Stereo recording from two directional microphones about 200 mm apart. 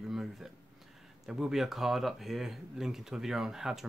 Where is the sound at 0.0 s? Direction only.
Centre (ahead or behind).